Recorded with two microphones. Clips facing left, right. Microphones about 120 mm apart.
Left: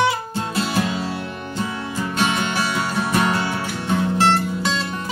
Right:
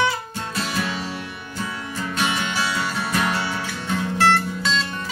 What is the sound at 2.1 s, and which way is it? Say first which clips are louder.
Music: left 3 dB; 25° left (ahead or behind).